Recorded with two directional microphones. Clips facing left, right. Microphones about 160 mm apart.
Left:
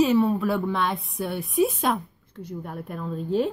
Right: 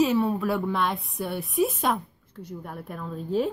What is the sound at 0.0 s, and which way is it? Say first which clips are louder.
A woman's voice: left 2 dB; centre (ahead or behind).